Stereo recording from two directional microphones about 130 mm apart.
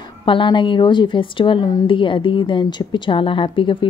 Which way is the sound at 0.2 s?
40° left (ahead or behind).